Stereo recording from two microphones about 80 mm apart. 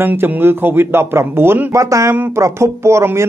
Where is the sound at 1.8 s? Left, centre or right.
Right.